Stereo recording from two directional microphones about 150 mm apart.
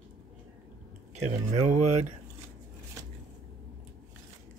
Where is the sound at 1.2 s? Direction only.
55° right (ahead or behind).